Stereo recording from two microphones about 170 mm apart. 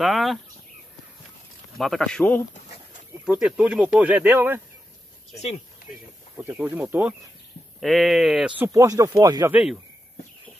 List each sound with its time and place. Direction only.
0.0 s speech: centre (ahead or behind)
1.8 s speech: centre (ahead or behind)
3.3 s speech: 5° right (ahead or behind)
6.3 s speech: 10° right (ahead or behind)
8.6 s speech: 20° right (ahead or behind)
9.5 s speech: 5° right (ahead or behind)